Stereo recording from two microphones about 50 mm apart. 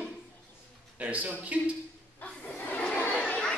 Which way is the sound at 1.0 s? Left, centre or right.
Right.